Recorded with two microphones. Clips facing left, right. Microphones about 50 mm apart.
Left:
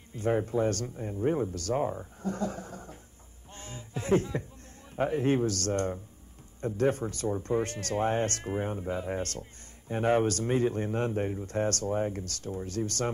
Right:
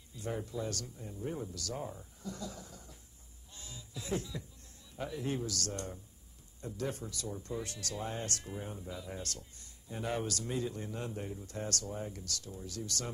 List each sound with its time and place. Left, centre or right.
0.1 s speech: left
3.5 s a sound: left
4.9 s a man's voice: left